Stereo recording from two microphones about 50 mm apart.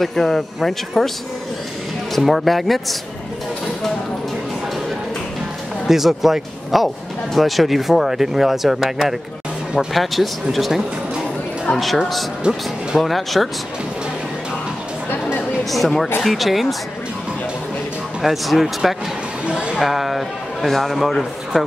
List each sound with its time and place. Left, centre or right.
0.0 s a man's voice: centre
2.1 s a man's voice: centre
5.9 s a man's voice: centre
12.4 s speech: centre
12.9 s a man's voice: centre
15.7 s a man's voice: centre
18.2 s a man's voice: centre
19.4 s speech: centre
19.8 s a man's voice: centre